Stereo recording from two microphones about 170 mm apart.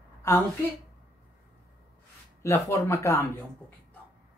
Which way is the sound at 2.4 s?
15° left (ahead or behind).